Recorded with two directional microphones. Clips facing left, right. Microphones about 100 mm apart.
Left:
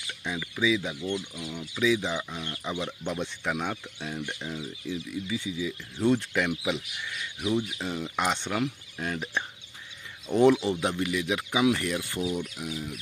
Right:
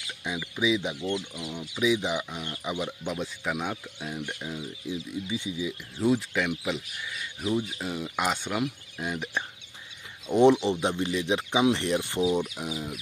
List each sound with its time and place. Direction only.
0.4 s speech: 20° right (ahead or behind)
4.8 s speech: 20° right (ahead or behind)
5.9 s speech: 5° right (ahead or behind); by 12.4 s 20° right (ahead or behind)